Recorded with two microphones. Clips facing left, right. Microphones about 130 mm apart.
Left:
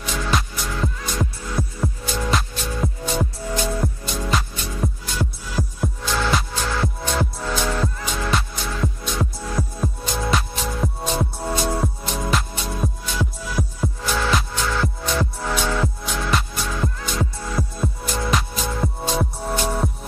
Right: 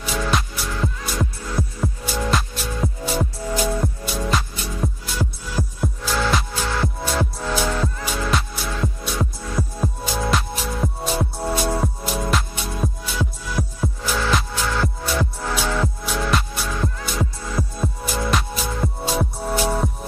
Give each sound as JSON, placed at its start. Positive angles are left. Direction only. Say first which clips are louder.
{"t": 0.0, "sound": "music", "louder": "right 1 dB", "side_deg": 0}